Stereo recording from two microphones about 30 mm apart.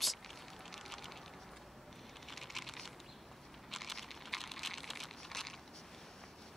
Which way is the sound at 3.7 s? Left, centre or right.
Centre.